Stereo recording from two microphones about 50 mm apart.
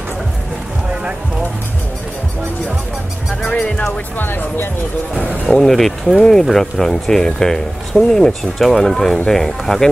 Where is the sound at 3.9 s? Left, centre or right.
Left.